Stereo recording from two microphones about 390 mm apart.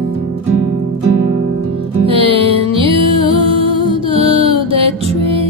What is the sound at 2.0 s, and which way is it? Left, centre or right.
Music, centre.